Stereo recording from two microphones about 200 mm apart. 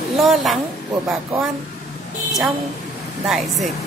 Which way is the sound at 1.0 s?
15° right (ahead or behind).